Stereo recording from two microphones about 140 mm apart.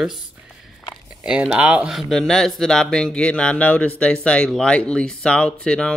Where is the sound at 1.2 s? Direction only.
5° right (ahead or behind).